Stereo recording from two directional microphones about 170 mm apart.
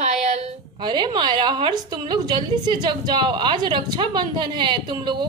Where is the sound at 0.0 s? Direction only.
40° right (ahead or behind).